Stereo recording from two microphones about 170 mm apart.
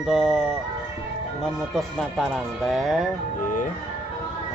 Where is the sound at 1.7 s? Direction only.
Centre (ahead or behind).